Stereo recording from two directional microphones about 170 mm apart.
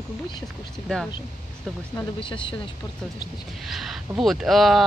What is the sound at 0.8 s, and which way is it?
Speech, 5° left (ahead or behind).